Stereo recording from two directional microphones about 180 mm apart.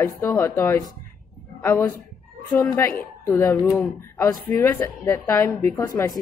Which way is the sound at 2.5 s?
10° left (ahead or behind).